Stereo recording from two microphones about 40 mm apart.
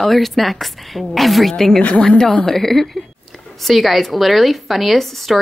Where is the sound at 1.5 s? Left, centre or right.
Centre.